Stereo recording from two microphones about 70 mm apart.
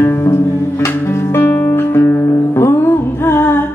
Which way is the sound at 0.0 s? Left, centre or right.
Left.